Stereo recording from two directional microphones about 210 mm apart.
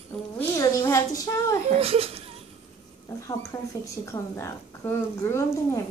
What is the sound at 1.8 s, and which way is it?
Speech, 30° right (ahead or behind).